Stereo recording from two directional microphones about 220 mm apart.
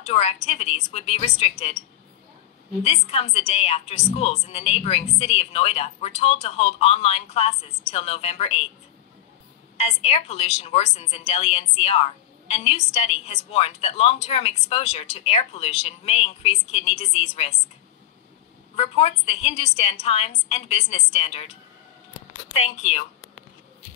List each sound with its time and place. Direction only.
0.0 s a woman's voice: 30° left (ahead or behind)
2.8 s a woman's voice: 30° left (ahead or behind)
9.8 s a woman's voice: 30° left (ahead or behind)
18.8 s a woman's voice: 30° left (ahead or behind)